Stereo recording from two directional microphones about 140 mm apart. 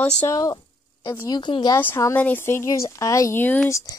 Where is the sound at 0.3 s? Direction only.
25° left (ahead or behind).